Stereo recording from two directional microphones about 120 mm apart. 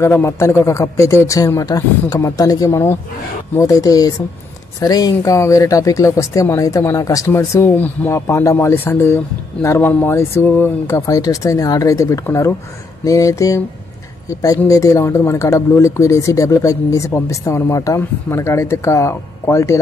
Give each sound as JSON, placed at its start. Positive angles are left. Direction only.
{"t": 0.0, "sound": "speech", "side_deg": 20}
{"t": 14.7, "sound": "speech", "side_deg": 25}